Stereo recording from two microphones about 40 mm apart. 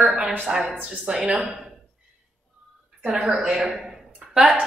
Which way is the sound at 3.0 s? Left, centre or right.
Right.